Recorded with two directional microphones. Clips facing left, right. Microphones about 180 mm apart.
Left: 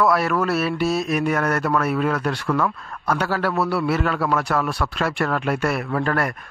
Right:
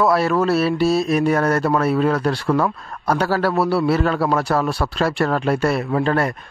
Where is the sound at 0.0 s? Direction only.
30° right (ahead or behind).